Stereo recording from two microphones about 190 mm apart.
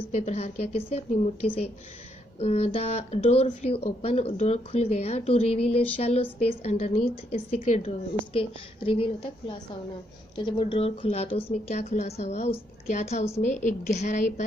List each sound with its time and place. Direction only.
0.1 s speech: 35° left (ahead or behind)